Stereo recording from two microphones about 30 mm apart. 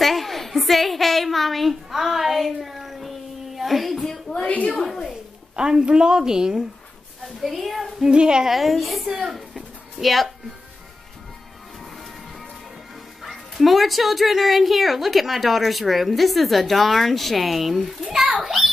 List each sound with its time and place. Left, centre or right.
0.0 s a sound: centre
1.9 s child singing: centre
4.3 s a woman's voice: centre
5.6 s a woman's voice: centre
7.4 s speech: centre
8.1 s a woman's voice: right
8.5 s speech: centre
13.2 s speech: centre